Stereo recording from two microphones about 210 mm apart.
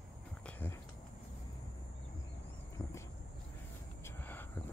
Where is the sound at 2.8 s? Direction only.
15° left (ahead or behind).